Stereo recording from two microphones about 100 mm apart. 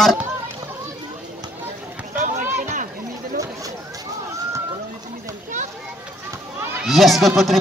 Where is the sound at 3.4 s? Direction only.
35° right (ahead or behind).